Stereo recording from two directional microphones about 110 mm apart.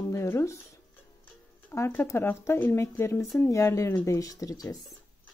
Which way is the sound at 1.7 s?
20° left (ahead or behind).